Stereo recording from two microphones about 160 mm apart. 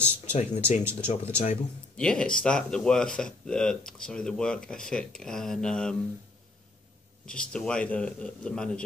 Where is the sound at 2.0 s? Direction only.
5° left (ahead or behind).